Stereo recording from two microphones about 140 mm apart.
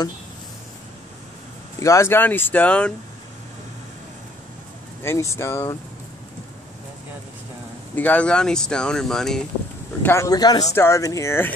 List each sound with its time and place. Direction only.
1.8 s speech: 20° left (ahead or behind)
5.0 s speech: 20° left (ahead or behind)
7.9 s speech: 10° left (ahead or behind)
10.0 s speech: 20° left (ahead or behind)